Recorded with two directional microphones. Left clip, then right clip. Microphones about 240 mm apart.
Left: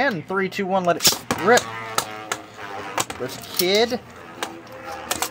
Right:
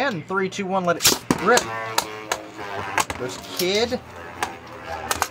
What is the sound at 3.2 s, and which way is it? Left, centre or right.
Speech, left.